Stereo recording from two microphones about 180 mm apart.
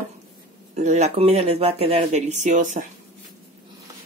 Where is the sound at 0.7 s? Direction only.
40° right (ahead or behind).